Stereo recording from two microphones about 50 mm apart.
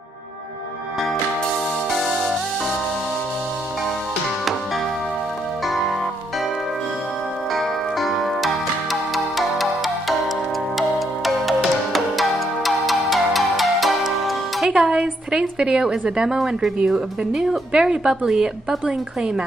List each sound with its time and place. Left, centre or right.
7.5 s music: centre
14.7 s speech: centre